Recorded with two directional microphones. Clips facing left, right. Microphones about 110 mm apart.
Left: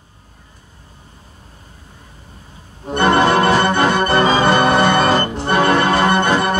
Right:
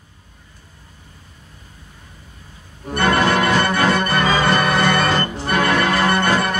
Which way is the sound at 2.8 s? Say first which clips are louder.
Left 3 dB; 25° left (ahead or behind).